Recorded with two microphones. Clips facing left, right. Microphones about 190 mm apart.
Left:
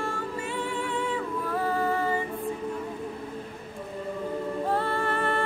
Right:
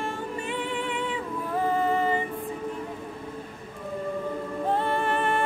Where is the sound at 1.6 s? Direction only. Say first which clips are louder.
Right 3 dB; 20° right (ahead or behind).